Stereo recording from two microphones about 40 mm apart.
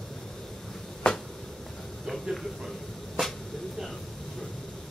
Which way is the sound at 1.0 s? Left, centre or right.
Centre.